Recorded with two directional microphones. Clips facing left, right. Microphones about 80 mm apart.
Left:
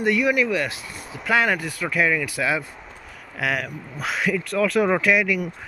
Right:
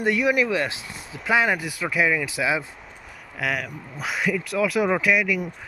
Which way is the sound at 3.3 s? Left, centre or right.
Centre.